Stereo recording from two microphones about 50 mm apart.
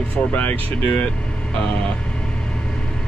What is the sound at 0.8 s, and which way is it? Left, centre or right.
Speech, left.